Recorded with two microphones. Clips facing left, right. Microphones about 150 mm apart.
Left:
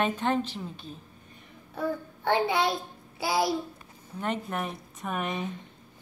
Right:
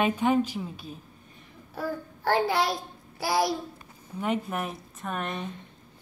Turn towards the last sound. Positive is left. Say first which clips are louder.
# left 1 dB
turn(degrees=5)  # may be behind; listen again after turning